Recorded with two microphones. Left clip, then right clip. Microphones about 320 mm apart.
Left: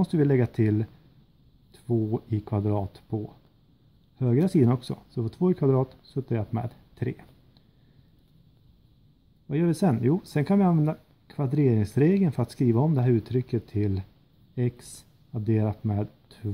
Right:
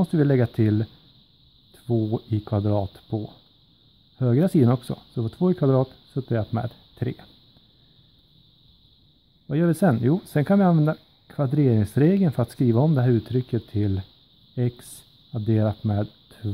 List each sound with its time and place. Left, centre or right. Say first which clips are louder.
0.0 s speech: right 2 dB; right
4.2 s speech: right 3 dB; right
9.5 s speech: right 4 dB; right